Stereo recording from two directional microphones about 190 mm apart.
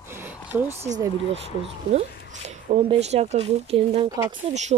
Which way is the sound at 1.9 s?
35° right (ahead or behind).